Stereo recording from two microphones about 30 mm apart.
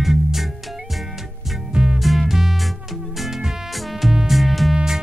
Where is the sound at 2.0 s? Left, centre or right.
Centre.